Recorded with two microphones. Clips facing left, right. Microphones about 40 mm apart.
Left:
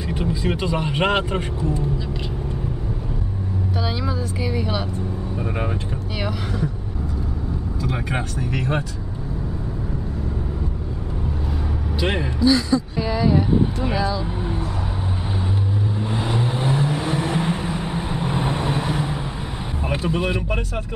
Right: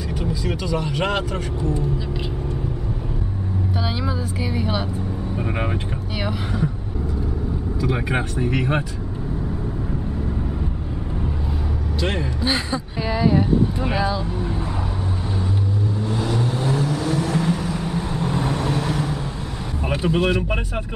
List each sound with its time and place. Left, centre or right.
0.1 s speech: left
3.8 s speech: centre
6.2 s speech: centre
7.8 s speech: centre
8.4 s speech: right
12.0 s speech: centre
12.4 s speech: right
13.0 s speech: centre
16.0 s vehicle: left
20.2 s speech: centre